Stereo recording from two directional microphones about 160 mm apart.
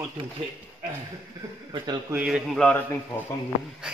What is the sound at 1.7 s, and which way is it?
Speech, 25° right (ahead or behind).